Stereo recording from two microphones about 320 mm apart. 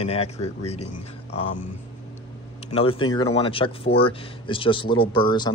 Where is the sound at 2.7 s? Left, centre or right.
Centre.